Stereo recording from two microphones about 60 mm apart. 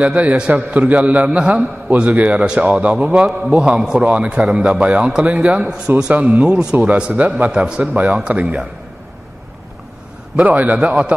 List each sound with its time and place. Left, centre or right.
0.0 s a man's voice: right
6.6 s a man's voice: centre
10.3 s a man's voice: right